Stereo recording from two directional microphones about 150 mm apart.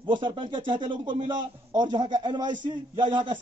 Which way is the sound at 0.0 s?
35° right (ahead or behind).